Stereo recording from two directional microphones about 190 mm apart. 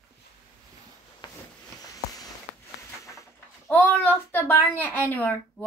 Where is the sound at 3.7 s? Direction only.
10° left (ahead or behind).